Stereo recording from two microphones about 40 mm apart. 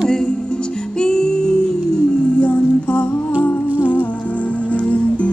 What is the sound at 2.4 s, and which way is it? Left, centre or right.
Music, left.